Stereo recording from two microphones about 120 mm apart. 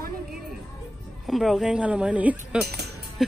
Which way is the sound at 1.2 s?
Centre (ahead or behind).